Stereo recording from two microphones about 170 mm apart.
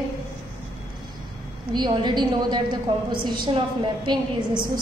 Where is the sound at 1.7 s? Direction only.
25° right (ahead or behind).